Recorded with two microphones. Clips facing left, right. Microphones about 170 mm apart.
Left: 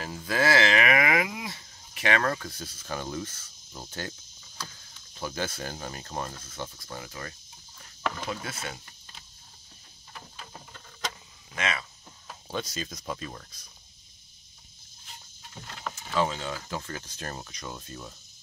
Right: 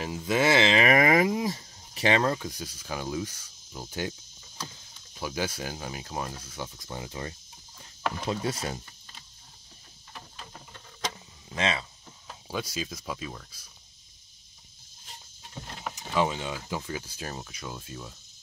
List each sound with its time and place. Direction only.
0.0 s a sound: 20° right (ahead or behind)
0.8 s a sound: 40° right (ahead or behind)
2.3 s speech: 15° right (ahead or behind)
4.6 s vehicle: 20° right (ahead or behind)
5.1 s speech: 10° right (ahead or behind)
8.3 s speech: 35° right (ahead or behind)
11.5 s speech: 30° right (ahead or behind)
12.4 s speech: 5° right (ahead or behind)
15.8 s speech: 15° right (ahead or behind)